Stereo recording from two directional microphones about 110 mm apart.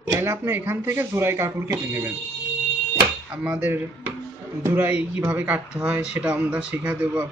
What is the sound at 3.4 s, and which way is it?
Speech, 15° right (ahead or behind).